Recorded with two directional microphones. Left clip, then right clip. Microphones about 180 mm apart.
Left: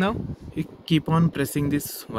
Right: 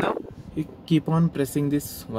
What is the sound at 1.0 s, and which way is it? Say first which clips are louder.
Speech: left 2 dB; 45° left (ahead or behind).